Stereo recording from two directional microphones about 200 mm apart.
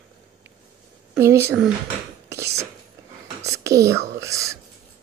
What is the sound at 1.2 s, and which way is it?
Speech, 15° right (ahead or behind).